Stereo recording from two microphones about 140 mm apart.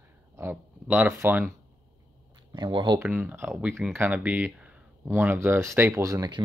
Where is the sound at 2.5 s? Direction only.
35° right (ahead or behind).